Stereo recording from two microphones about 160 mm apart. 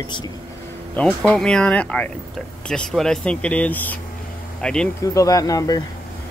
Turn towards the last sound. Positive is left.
turn(degrees=25)  # may be behind; listen again after turning